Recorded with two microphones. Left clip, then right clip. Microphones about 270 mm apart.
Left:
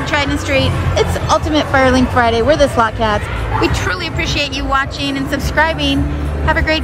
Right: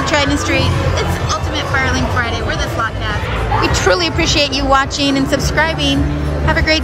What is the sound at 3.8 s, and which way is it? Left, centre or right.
A woman's voice, centre.